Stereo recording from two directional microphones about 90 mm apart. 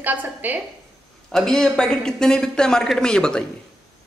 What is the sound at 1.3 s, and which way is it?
A man's voice, 5° left (ahead or behind).